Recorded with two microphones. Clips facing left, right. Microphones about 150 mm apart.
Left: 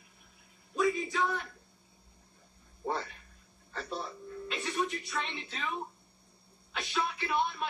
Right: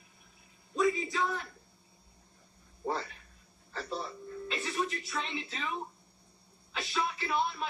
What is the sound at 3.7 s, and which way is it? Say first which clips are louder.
Television: right 1 dB; centre (ahead or behind).